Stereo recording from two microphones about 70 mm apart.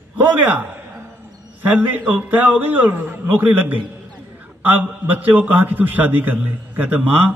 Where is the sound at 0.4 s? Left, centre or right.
Right.